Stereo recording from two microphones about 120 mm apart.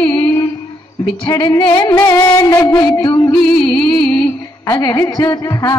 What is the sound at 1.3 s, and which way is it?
Music, 35° left (ahead or behind).